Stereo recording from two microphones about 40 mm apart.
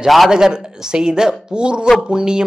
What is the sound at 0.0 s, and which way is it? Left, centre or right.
Speech, centre.